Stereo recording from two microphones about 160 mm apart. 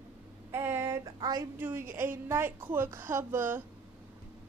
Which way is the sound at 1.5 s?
10° right (ahead or behind).